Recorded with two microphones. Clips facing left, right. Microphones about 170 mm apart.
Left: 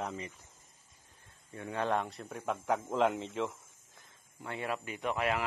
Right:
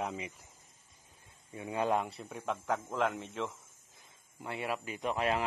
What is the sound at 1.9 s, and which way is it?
Speech, centre (ahead or behind).